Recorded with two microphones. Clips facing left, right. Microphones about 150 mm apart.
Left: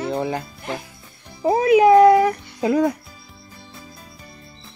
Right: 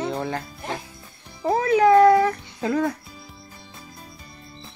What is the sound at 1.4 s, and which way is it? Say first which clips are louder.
Music: left 4 dB; 15° left (ahead or behind).